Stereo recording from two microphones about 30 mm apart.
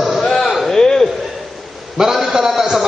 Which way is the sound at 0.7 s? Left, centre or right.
Centre.